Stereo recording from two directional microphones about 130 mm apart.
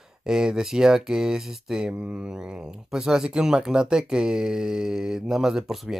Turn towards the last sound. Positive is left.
turn(degrees=0)  # may be behind; listen again after turning